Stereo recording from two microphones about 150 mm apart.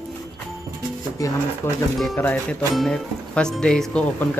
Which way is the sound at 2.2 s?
10° left (ahead or behind).